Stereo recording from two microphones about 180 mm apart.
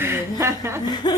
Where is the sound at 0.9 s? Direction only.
25° left (ahead or behind).